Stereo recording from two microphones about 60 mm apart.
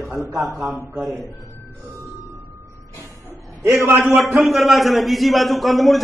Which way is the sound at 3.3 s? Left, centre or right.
Right.